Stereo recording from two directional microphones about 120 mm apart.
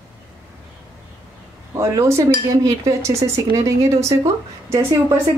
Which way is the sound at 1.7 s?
25° right (ahead or behind).